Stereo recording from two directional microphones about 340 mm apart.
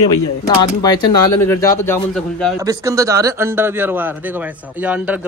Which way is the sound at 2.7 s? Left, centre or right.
Centre.